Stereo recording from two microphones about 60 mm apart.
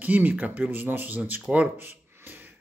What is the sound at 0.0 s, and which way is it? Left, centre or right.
Speech, right.